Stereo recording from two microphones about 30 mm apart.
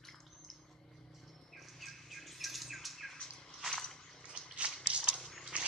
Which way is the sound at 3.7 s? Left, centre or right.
Centre.